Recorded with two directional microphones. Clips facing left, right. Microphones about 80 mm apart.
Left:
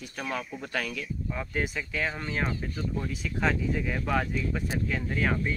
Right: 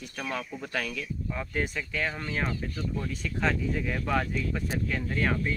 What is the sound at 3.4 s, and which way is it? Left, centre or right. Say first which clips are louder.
Speech: left 1 dB; centre.